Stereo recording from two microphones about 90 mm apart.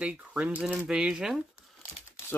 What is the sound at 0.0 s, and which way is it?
Speech, 15° right (ahead or behind).